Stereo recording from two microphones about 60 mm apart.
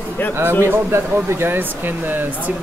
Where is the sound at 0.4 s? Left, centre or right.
Right.